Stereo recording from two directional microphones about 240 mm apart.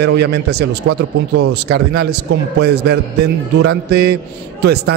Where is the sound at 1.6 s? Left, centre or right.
Right.